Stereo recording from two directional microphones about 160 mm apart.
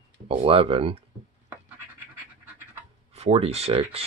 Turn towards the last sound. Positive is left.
turn(degrees=-35)  # may be behind; listen again after turning